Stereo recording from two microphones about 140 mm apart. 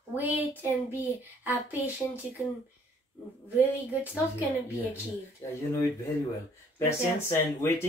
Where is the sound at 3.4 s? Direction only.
10° right (ahead or behind).